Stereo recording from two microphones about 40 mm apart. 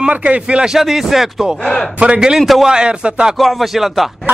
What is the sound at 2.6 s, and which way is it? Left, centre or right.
Speech, right.